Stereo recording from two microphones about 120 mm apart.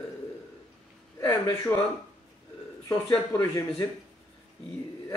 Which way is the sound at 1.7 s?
15° left (ahead or behind).